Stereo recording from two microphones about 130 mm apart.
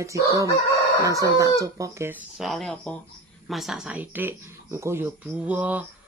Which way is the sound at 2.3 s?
Centre (ahead or behind).